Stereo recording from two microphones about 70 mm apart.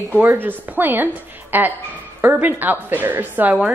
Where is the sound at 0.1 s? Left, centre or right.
Right.